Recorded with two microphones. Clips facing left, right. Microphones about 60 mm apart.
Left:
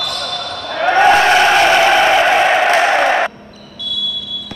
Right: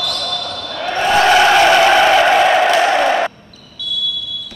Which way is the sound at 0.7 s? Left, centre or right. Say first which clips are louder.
Left 7 dB; left.